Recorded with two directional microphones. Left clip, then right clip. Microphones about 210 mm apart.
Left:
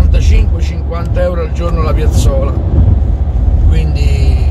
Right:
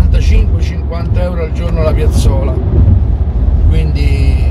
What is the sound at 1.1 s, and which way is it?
Speech, 10° right (ahead or behind).